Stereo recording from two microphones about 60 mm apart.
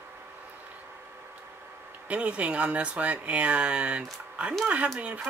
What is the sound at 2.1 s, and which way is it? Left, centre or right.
Speech, centre.